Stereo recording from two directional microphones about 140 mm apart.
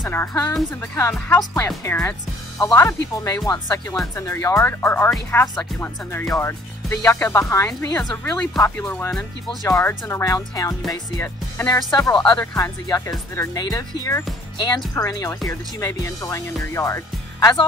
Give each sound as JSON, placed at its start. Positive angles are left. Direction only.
{"t": 0.1, "sound": "speech", "side_deg": 20}
{"t": 12.8, "sound": "speech", "side_deg": 25}